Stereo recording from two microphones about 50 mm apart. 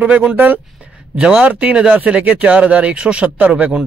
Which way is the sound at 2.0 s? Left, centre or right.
Right.